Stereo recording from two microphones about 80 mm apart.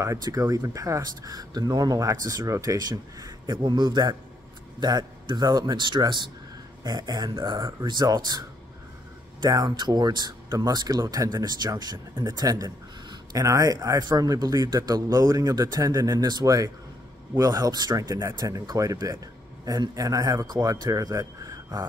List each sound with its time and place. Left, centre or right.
0.2 s speech: right
3.5 s a man's voice: right
6.8 s speech: right
9.5 s speech: right
11.4 s speech: right